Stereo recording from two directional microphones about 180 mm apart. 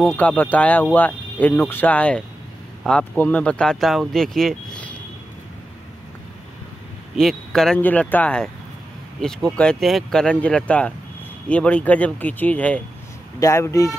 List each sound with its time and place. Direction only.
0.0 s speech: 5° left (ahead or behind)
7.2 s speech: centre (ahead or behind)